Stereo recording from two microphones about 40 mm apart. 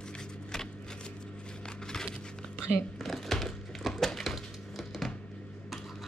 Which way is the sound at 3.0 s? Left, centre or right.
Centre.